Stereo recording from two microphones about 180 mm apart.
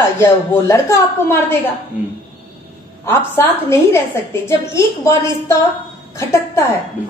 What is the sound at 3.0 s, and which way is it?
A woman's voice, 15° left (ahead or behind).